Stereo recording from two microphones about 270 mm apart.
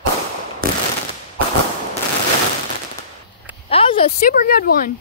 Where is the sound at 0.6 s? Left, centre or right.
Right.